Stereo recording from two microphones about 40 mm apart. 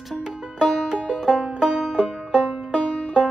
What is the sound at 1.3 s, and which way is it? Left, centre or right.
Music, right.